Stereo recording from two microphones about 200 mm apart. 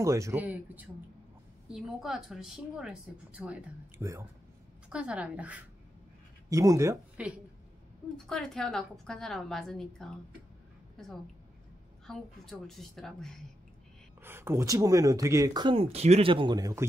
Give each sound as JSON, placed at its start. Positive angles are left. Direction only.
{"t": 0.0, "sound": "a woman's voice", "side_deg": -15}
{"t": 8.3, "sound": "a woman's voice", "side_deg": 5}
{"t": 12.1, "sound": "a woman's voice", "side_deg": 0}
{"t": 14.2, "sound": "speech", "side_deg": -10}